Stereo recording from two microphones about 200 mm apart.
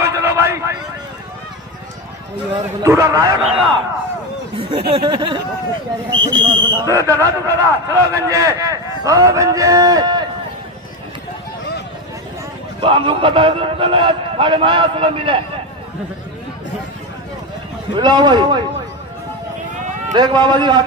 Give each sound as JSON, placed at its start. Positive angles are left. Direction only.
{"t": 0.0, "sound": "a sound", "side_deg": -15}
{"t": 2.5, "sound": "a man's voice", "side_deg": -15}
{"t": 4.6, "sound": "a sound", "side_deg": -25}
{"t": 4.9, "sound": "a man's voice", "side_deg": -20}
{"t": 12.8, "sound": "a man's voice", "side_deg": -25}
{"t": 17.9, "sound": "a man's voice", "side_deg": -20}
{"t": 20.2, "sound": "a man's voice", "side_deg": -20}